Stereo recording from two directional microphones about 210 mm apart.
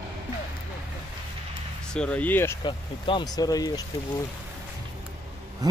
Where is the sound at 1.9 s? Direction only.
5° left (ahead or behind).